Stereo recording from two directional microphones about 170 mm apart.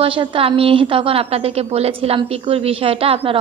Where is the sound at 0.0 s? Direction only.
30° right (ahead or behind).